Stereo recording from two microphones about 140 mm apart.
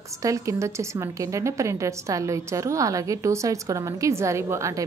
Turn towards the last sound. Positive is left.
turn(degrees=-20)  # may be behind; listen again after turning